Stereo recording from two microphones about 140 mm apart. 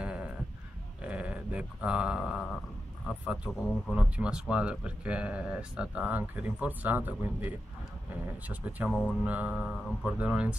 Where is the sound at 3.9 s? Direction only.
5° right (ahead or behind).